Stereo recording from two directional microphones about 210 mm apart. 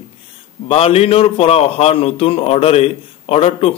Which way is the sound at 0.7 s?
30° left (ahead or behind).